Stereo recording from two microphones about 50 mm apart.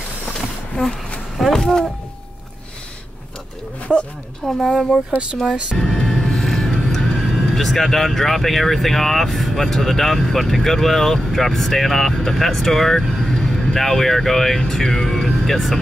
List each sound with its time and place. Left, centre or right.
0.3 s a sound: centre
3.9 s speech: centre
4.5 s speech: centre
5.5 s speech: right
6.0 s music: centre
6.9 s speech: centre
13.2 s vehicle: centre
13.7 s speech: centre